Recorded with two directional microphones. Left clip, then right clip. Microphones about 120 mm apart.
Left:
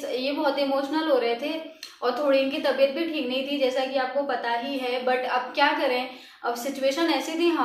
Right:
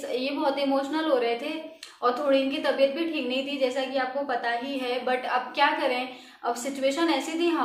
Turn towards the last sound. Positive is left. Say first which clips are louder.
# left 2 dB
turn(degrees=-25)  # may be behind; listen again after turning